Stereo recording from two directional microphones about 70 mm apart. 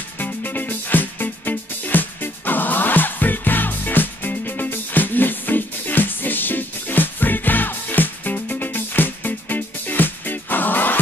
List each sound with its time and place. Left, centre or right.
0.2 s music: left